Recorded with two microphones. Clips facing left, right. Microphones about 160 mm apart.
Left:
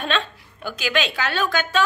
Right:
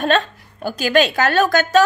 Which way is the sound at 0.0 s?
40° right (ahead or behind).